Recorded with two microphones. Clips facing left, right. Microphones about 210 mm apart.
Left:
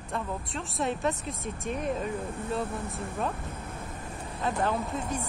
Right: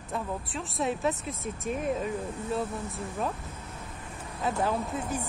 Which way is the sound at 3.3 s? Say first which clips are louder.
Left 3 dB; 55° left (ahead or behind).